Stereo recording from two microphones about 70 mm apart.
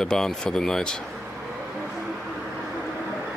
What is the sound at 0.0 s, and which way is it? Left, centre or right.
Speech, centre.